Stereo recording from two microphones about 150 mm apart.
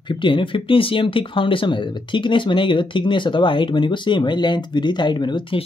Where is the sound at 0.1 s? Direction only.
35° left (ahead or behind).